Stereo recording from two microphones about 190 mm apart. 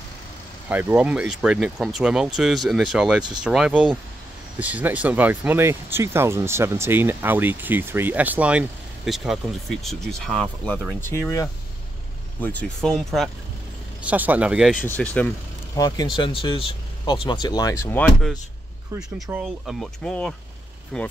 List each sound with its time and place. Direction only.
0.7 s speech: 10° right (ahead or behind)
14.9 s speech: 10° left (ahead or behind)
16.2 s speech: 25° left (ahead or behind)
17.9 s speech: 5° left (ahead or behind)
19.3 s speech: 10° right (ahead or behind)
19.6 s speech: centre (ahead or behind)